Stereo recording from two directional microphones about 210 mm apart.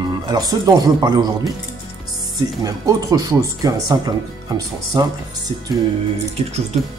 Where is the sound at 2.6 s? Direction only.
15° right (ahead or behind).